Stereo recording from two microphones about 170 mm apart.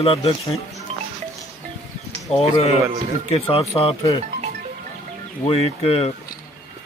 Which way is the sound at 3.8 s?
35° left (ahead or behind).